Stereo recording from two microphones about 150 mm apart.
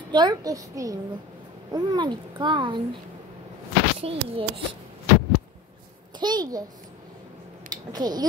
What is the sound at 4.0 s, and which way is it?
Speech, 40° right (ahead or behind).